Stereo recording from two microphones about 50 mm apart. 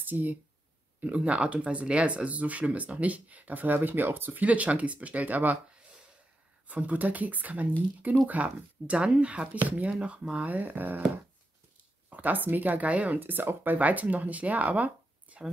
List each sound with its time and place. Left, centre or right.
0.0 s speech: right
1.0 s speech: right
6.7 s speech: right
10.5 s speech: right
12.1 s speech: right
13.2 s speech: right